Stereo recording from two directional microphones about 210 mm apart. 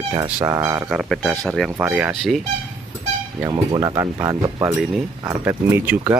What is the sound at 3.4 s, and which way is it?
Speech, 15° right (ahead or behind).